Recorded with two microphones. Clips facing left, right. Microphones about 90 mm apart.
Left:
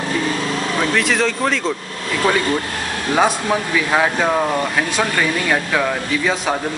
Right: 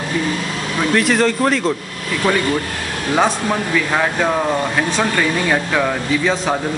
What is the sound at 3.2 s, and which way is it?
Speech, 5° left (ahead or behind).